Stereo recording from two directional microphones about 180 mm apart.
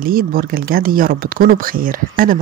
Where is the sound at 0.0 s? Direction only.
55° right (ahead or behind).